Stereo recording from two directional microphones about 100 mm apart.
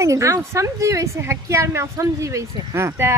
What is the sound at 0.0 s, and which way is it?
Speech, 30° right (ahead or behind).